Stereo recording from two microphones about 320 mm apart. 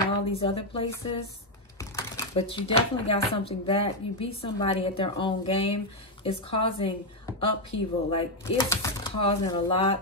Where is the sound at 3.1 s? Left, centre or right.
Centre.